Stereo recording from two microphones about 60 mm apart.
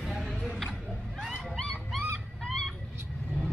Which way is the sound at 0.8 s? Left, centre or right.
Centre.